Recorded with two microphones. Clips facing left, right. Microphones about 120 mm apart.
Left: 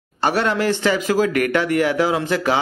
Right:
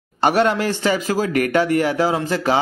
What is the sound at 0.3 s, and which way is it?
Speech, 45° right (ahead or behind).